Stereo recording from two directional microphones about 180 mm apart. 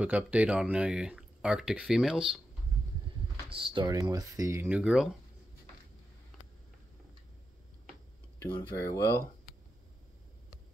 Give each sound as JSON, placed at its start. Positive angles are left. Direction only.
{"t": 0.0, "sound": "speech", "side_deg": -10}
{"t": 3.5, "sound": "speech", "side_deg": -25}
{"t": 8.4, "sound": "speech", "side_deg": 10}